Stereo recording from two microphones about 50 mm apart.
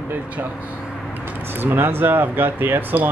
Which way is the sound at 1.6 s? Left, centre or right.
Right.